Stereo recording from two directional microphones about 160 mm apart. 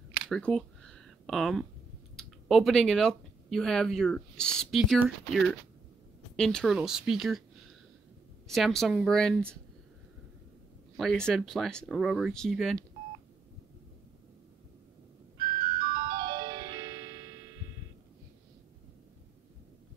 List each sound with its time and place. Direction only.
0.3 s a sound: 5° left (ahead or behind)
2.1 s speech: centre (ahead or behind)
8.5 s speech: centre (ahead or behind)
11.0 s speech: 5° left (ahead or behind)
15.6 s music: 30° right (ahead or behind)